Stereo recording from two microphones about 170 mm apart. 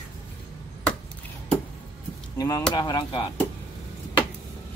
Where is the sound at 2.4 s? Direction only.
20° left (ahead or behind).